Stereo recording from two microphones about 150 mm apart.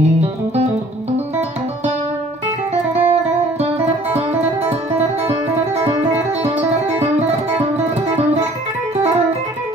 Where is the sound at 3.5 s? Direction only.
45° right (ahead or behind).